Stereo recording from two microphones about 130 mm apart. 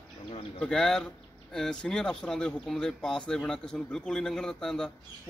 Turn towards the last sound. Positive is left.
turn(degrees=5)  # may be behind; listen again after turning